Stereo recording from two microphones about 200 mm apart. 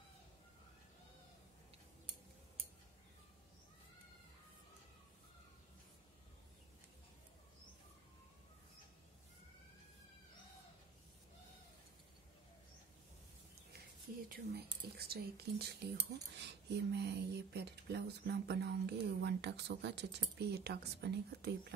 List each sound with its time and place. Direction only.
14.3 s speech: 50° right (ahead or behind)